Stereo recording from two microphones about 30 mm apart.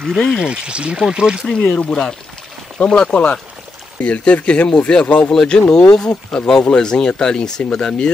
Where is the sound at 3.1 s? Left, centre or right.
Left.